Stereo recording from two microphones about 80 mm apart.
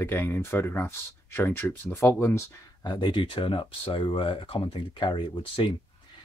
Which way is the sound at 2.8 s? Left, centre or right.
Left.